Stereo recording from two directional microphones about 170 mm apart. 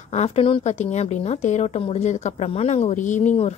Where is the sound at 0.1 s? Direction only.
35° left (ahead or behind).